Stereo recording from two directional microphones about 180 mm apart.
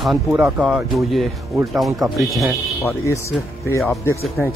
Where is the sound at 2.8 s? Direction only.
15° left (ahead or behind).